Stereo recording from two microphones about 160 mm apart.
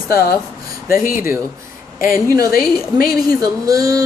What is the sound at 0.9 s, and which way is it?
Speech, 60° left (ahead or behind).